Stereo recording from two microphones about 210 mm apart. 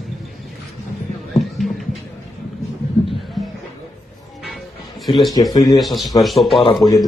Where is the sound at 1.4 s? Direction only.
Centre (ahead or behind).